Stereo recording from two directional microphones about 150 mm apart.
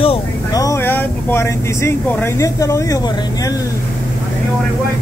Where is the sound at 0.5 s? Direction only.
20° left (ahead or behind).